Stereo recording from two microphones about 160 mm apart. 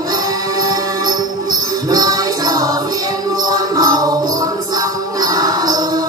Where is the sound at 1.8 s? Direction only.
25° right (ahead or behind).